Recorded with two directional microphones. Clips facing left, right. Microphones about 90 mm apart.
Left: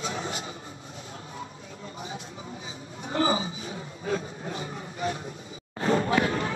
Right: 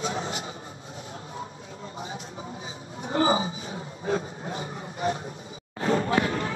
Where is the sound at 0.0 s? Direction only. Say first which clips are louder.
Right 2 dB; 35° right (ahead or behind).